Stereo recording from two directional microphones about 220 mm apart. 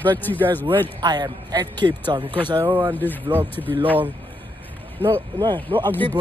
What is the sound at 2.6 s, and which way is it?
Speech, 10° right (ahead or behind).